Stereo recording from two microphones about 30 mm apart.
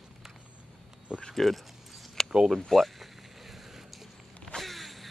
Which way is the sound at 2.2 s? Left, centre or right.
Centre.